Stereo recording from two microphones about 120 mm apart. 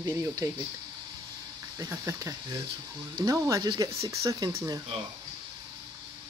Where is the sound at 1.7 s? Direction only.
25° right (ahead or behind).